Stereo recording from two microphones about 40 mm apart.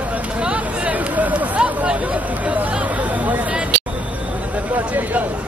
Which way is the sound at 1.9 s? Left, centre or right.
Right.